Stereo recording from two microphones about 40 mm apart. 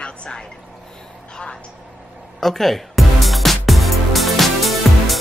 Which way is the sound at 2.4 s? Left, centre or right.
Centre.